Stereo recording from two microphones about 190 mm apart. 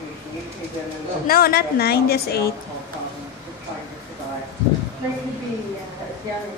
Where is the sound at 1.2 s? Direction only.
50° left (ahead or behind).